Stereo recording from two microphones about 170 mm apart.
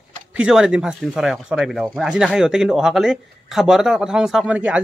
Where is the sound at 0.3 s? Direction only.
5° right (ahead or behind).